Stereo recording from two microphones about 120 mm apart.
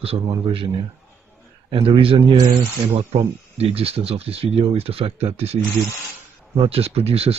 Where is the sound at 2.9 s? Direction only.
60° right (ahead or behind).